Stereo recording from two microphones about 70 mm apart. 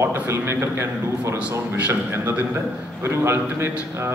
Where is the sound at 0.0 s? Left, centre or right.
Right.